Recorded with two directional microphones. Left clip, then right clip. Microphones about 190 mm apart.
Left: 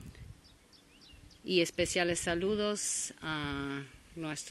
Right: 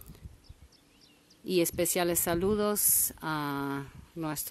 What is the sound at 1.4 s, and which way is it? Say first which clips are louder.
Speech: right 2 dB; 20° right (ahead or behind).